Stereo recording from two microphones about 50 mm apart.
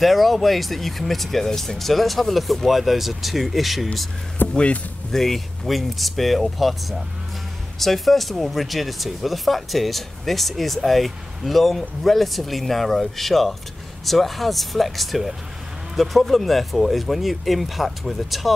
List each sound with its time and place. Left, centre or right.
0.0 s speech: centre
4.4 s speech: left
5.1 s speech: centre